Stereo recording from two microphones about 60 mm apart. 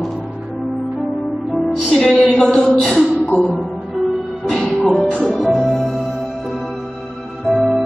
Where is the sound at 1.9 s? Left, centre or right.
Centre.